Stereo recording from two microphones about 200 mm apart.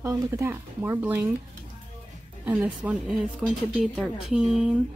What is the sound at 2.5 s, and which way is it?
Speech, 5° right (ahead or behind).